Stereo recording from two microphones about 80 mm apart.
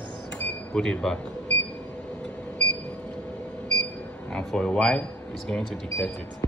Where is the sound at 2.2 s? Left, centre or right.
Centre.